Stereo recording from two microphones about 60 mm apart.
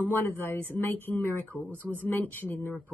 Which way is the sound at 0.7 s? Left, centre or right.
Left.